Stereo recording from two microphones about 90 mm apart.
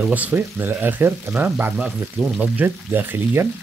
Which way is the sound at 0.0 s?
15° right (ahead or behind).